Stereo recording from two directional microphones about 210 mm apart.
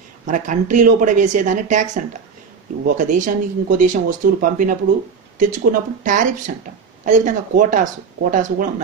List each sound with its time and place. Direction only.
0.3 s speech: 40° right (ahead or behind)
3.0 s speech: 35° right (ahead or behind)